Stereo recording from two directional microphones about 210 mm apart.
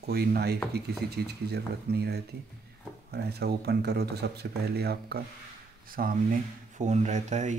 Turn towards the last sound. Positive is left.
turn(degrees=-35)  # may be behind; listen again after turning